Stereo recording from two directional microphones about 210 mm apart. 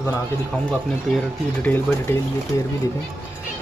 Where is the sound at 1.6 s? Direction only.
10° left (ahead or behind).